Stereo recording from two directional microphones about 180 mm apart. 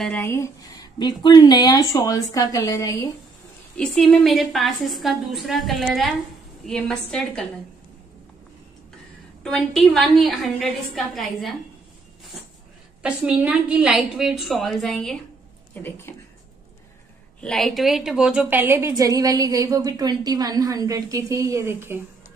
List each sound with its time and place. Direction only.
0.0 s speech: 10° left (ahead or behind)
3.7 s a woman's voice: 5° left (ahead or behind)
9.4 s a woman's voice: centre (ahead or behind)
13.0 s a woman's voice: 5° right (ahead or behind); by 16.2 s 10° left (ahead or behind)
17.4 s a woman's voice: centre (ahead or behind)